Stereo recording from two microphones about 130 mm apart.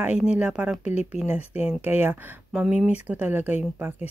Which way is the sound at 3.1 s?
15° right (ahead or behind).